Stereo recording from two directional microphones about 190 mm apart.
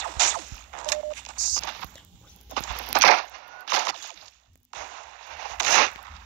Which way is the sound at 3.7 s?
40° right (ahead or behind).